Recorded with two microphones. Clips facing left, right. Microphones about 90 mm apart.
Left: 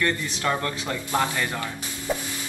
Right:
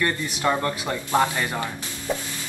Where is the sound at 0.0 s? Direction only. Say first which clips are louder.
Right 2 dB; 15° right (ahead or behind).